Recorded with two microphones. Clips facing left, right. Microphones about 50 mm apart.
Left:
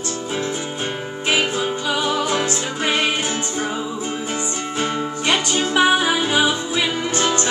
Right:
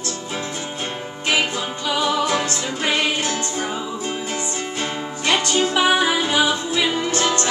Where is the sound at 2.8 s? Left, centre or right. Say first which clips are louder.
Even; left.